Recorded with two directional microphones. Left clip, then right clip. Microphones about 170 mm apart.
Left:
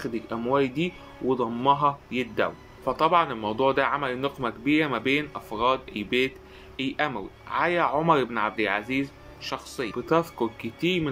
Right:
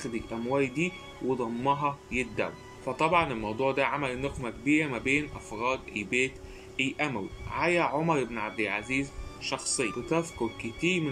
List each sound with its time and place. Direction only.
0.3 s a man's voice: 15° right (ahead or behind)